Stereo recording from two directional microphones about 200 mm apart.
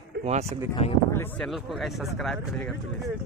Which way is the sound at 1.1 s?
10° left (ahead or behind).